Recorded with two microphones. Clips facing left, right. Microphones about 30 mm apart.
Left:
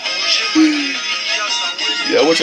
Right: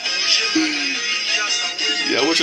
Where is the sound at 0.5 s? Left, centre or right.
Centre.